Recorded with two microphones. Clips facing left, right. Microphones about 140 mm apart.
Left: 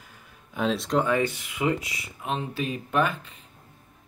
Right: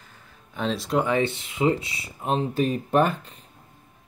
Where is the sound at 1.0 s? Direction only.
25° right (ahead or behind); by 3.3 s 40° right (ahead or behind).